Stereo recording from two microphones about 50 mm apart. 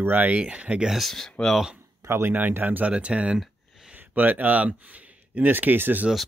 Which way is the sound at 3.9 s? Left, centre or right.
Right.